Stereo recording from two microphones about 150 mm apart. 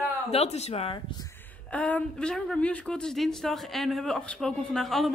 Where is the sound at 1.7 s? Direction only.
10° left (ahead or behind).